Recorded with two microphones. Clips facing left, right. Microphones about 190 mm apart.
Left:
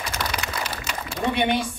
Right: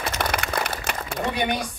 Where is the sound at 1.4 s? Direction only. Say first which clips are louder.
Left 4 dB; 30° left (ahead or behind).